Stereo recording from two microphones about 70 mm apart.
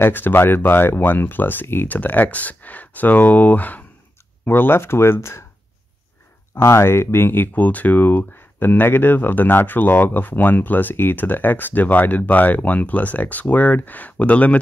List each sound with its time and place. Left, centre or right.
0.0 s speech: left
6.5 s speech: left; by 14.6 s centre